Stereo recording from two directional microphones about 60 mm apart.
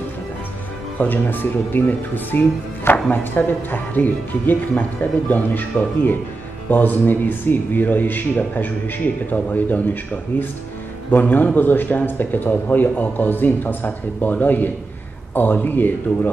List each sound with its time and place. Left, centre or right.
0.9 s speech: left